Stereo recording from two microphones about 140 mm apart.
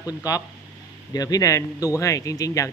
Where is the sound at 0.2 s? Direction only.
25° left (ahead or behind).